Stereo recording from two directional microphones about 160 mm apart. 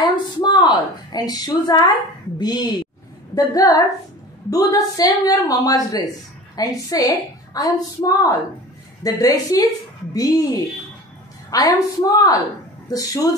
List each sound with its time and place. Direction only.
0.0 s a woman's voice: 25° left (ahead or behind)